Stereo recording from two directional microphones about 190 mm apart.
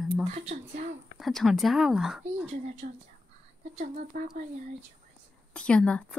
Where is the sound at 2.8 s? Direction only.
50° right (ahead or behind).